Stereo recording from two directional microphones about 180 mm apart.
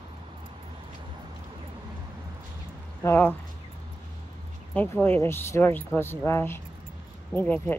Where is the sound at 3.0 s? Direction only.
10° left (ahead or behind).